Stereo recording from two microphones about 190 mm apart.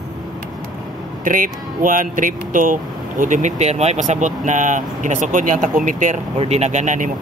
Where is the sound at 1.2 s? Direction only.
45° right (ahead or behind).